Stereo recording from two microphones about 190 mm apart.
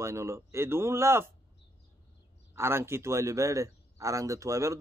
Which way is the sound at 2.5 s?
15° right (ahead or behind).